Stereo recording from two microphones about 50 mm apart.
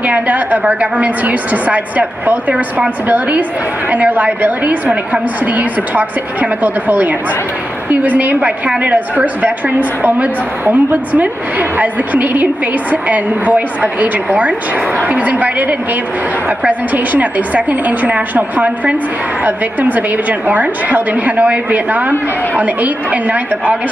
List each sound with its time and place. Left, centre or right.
0.0 s a woman's voice: right